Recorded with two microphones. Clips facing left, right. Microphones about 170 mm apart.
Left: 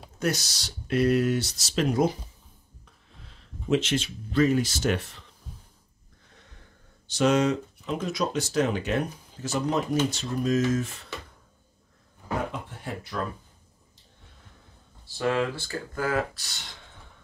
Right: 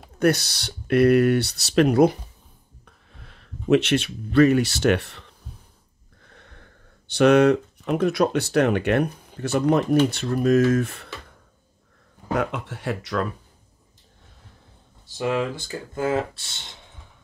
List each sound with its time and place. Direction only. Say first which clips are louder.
0.2 s speech: right 8 dB; 60° right (ahead or behind)
6.3 s a sound: right 5 dB; 60° right (ahead or behind)
7.1 s speech: right 7 dB; 60° right (ahead or behind)
12.4 s speech: right 6 dB; 85° right
15.0 s speech: right 2 dB; 15° right (ahead or behind)